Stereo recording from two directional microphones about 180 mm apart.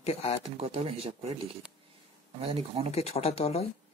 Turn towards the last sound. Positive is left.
turn(degrees=35)  # may be behind; listen again after turning